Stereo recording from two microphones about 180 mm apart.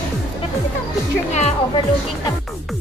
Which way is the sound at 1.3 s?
40° left (ahead or behind).